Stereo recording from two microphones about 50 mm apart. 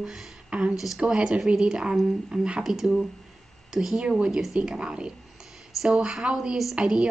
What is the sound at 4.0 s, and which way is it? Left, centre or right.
Speech, centre.